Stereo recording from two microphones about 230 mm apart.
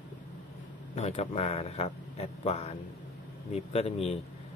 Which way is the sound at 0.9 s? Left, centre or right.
Left.